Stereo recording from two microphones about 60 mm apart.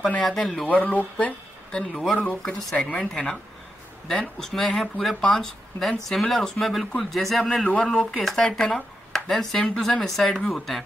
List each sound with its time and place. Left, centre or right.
0.2 s speech: centre
0.7 s speech: left
1.2 s a sound: centre
2.1 s speech: left; by 7.6 s centre
7.6 s speech: centre
8.5 s speech: centre